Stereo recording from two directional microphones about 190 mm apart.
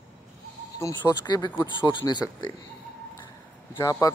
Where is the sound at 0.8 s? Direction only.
20° left (ahead or behind).